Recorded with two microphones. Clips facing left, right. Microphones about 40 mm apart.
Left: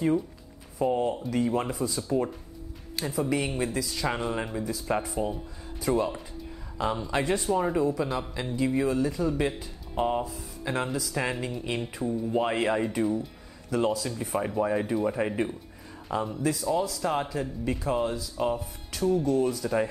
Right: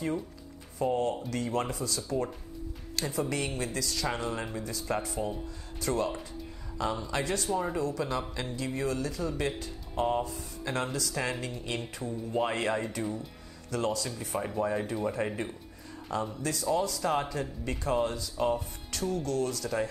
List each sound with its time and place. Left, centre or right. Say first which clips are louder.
0.7 s speech: left 3 dB; centre